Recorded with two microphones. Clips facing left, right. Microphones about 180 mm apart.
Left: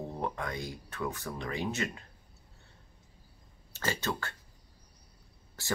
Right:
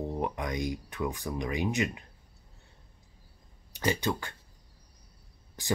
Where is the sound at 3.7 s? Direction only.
15° right (ahead or behind).